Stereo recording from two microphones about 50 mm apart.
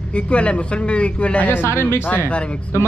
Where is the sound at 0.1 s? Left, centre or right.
Left.